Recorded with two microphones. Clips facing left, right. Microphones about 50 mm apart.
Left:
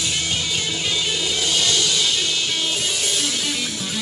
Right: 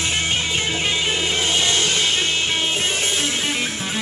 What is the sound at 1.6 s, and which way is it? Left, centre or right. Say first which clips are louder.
Music: right 1 dB; right.